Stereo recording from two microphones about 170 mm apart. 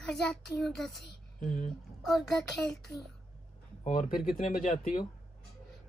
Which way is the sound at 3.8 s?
50° left (ahead or behind).